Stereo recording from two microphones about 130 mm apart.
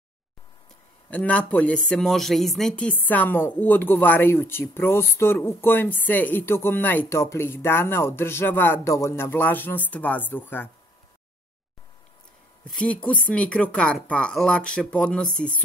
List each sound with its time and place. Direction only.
1.1 s speech: 10° left (ahead or behind)
12.6 s speech: 10° left (ahead or behind)